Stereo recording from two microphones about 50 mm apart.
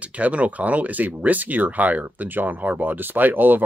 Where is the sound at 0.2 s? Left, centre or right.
Right.